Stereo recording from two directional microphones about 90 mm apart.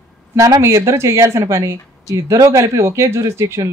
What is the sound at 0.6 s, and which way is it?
A woman's voice, 35° right (ahead or behind).